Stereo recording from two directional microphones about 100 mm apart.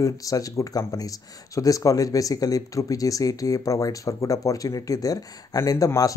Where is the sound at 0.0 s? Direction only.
35° left (ahead or behind).